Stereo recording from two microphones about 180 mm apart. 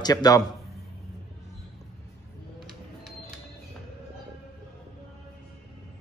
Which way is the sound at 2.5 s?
Centre (ahead or behind).